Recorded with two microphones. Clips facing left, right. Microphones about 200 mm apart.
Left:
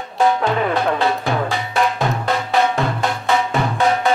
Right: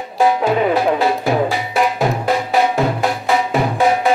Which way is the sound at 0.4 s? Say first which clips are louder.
Right 3 dB; 15° right (ahead or behind).